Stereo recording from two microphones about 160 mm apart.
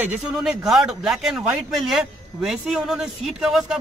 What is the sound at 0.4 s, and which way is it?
A man's voice, 5° right (ahead or behind).